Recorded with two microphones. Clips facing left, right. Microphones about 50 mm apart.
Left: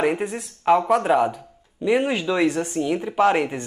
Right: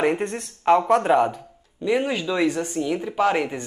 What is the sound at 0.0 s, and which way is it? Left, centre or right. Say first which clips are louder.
Speech: even; centre.